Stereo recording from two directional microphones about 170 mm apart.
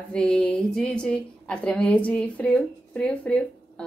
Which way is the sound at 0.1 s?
5° left (ahead or behind).